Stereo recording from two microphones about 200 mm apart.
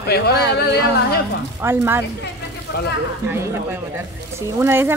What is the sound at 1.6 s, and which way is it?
Speech, 15° right (ahead or behind).